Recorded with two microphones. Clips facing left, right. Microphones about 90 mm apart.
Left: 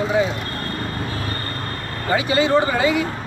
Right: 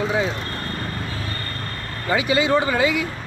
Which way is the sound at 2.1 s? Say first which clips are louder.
Left 1 dB; 55° left (ahead or behind).